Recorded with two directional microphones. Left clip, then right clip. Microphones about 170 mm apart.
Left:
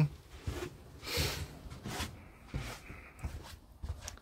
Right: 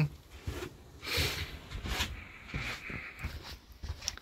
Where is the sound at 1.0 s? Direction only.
10° left (ahead or behind).